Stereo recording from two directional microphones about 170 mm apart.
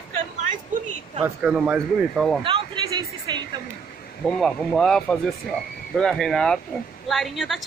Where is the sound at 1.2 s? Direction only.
5° right (ahead or behind).